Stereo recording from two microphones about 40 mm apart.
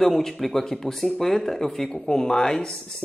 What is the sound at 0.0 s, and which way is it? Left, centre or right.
Speech, centre.